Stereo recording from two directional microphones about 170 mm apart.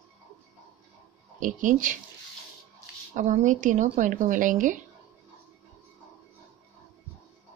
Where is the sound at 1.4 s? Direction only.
50° right (ahead or behind).